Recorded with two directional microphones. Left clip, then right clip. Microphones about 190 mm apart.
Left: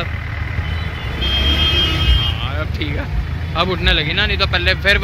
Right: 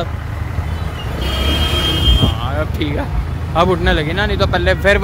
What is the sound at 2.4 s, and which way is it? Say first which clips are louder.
Speech: right 3 dB; 30° right (ahead or behind).